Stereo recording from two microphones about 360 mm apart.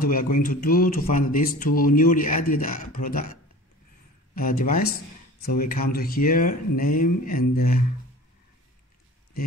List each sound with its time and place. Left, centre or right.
0.0 s speech: left
4.4 s speech: left